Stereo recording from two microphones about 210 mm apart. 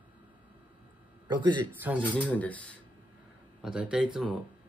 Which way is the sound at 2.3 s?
5° left (ahead or behind).